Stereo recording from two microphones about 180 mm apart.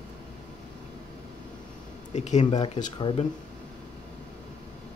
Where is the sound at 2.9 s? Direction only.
30° left (ahead or behind).